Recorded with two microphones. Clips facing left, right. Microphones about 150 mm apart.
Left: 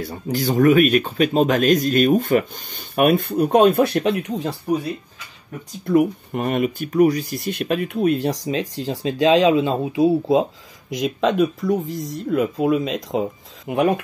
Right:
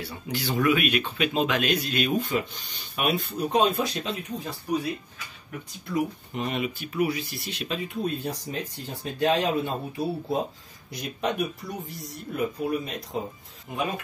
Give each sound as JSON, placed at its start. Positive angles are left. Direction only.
{"t": 0.0, "sound": "speech", "side_deg": 45}
{"t": 5.9, "sound": "speech", "side_deg": 55}
{"t": 13.7, "sound": "speech", "side_deg": 70}